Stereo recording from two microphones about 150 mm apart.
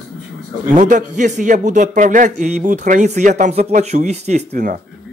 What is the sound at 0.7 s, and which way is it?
A man's voice, 60° right (ahead or behind).